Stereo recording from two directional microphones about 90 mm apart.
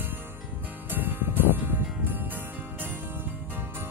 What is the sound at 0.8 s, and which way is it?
Music, 20° right (ahead or behind).